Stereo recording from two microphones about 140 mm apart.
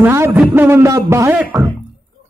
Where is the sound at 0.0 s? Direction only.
15° right (ahead or behind).